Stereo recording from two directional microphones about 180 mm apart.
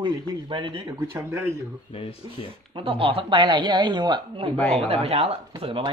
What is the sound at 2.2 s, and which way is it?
Speech, 30° right (ahead or behind).